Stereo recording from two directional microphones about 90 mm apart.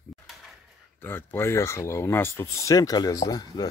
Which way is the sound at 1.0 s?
25° left (ahead or behind).